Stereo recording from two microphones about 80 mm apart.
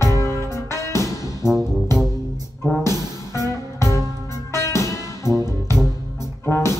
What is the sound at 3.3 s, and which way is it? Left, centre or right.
Music, left.